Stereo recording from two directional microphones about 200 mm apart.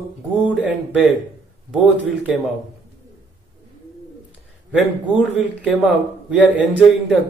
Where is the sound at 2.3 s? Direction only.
Centre (ahead or behind).